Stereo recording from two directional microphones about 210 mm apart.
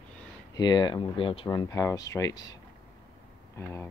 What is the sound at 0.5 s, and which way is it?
Speech, 20° left (ahead or behind).